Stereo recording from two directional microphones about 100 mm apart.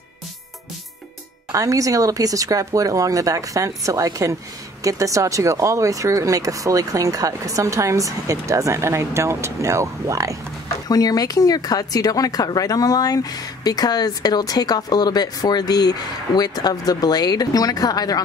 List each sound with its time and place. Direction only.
1.5 s speech: 35° right (ahead or behind)
10.9 s speech: 40° left (ahead or behind)